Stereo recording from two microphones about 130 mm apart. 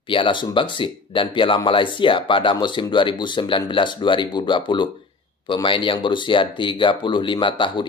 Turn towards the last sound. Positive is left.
turn(degrees=40)  # may be behind; listen again after turning